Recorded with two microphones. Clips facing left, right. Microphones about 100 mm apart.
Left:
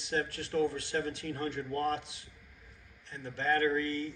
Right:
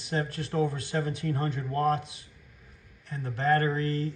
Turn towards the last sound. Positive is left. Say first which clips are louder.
# right 4 dB
turn(degrees=-45)  # may be behind; listen again after turning